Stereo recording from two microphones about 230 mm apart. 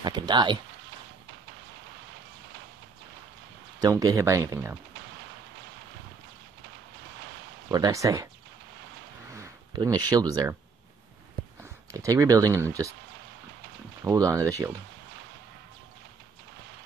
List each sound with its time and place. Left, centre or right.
0.0 s speech: centre
3.8 s speech: centre
7.7 s speech: centre
9.3 s a sound: centre
10.1 s speech: centre
11.9 s speech: centre
14.0 s speech: centre